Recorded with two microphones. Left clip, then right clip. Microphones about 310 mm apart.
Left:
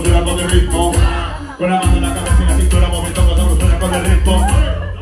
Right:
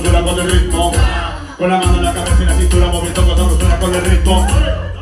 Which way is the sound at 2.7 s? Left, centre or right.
Centre.